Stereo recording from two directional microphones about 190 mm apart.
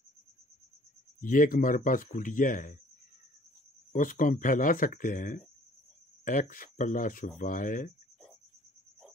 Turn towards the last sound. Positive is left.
turn(degrees=45)  # may be behind; listen again after turning